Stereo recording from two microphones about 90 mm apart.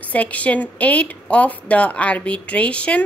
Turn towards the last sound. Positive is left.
turn(degrees=15)  # may be behind; listen again after turning